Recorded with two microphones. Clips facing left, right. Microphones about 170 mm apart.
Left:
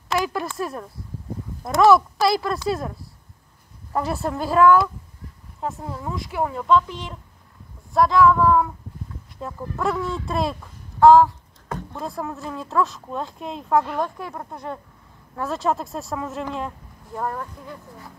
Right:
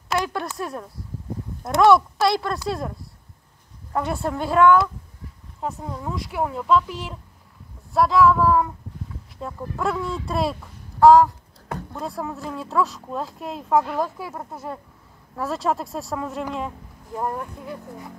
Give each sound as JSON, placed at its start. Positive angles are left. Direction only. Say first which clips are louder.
{"t": 0.1, "sound": "speech", "louder": "left 1 dB", "side_deg": 0}
{"t": 17.1, "sound": "speech", "louder": "right 1 dB", "side_deg": -15}